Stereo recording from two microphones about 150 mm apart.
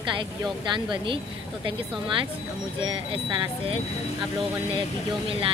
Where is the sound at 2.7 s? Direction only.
35° right (ahead or behind).